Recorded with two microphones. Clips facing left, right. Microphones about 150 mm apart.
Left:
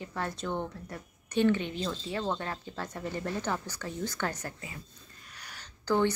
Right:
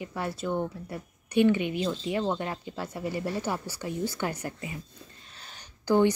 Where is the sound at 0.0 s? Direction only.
10° right (ahead or behind).